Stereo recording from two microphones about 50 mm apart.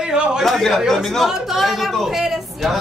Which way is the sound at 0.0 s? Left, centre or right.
Centre.